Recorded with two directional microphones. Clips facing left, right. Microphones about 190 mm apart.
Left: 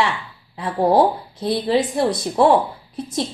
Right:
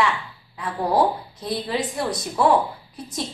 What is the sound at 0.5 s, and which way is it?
A woman's voice, 30° left (ahead or behind).